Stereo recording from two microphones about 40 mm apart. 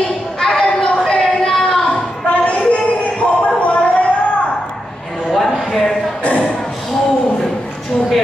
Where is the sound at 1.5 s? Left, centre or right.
Centre.